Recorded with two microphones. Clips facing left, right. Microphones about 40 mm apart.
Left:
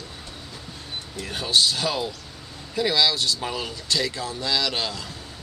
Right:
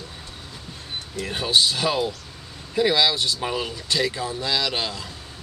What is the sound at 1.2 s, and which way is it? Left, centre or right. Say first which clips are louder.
Speech: right 1 dB; centre.